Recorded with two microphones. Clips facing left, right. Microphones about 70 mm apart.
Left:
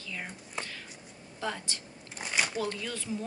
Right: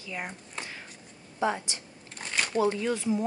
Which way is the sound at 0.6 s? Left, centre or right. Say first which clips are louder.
Left 1 dB; centre.